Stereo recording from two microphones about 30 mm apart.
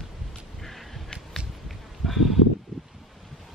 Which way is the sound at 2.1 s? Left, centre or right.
Centre.